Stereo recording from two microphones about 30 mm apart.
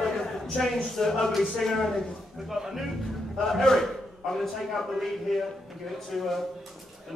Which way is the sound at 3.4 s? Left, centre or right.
Centre.